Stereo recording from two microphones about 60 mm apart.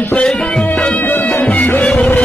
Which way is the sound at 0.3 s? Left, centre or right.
Centre.